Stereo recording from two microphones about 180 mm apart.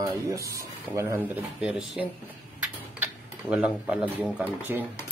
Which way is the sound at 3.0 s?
5° right (ahead or behind).